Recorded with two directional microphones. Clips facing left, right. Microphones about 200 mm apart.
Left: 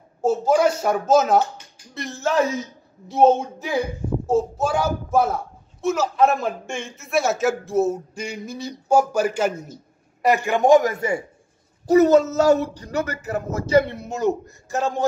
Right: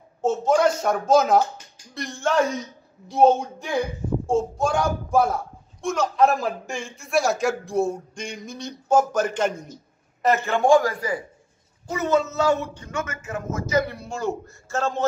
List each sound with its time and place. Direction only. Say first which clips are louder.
0.2 s a man's voice: left 2 dB; 5° left (ahead or behind); by 11.2 s 25° left (ahead or behind)
11.9 s speech: left 8 dB; 40° left (ahead or behind); by 15.0 s 15° left (ahead or behind)